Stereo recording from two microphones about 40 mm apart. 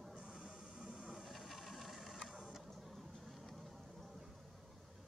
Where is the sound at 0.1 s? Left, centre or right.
Right.